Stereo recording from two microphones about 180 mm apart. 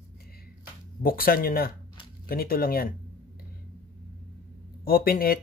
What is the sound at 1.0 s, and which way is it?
Speech, 55° left (ahead or behind).